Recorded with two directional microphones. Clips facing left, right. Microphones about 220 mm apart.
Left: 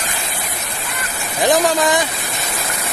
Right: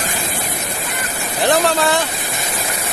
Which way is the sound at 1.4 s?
15° left (ahead or behind).